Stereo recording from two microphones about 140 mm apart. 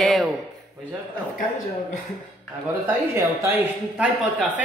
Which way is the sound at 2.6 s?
15° right (ahead or behind).